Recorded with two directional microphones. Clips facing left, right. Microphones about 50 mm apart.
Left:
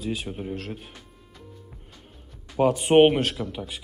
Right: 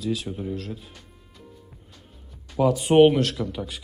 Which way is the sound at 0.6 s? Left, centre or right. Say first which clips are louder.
Right 1 dB; left.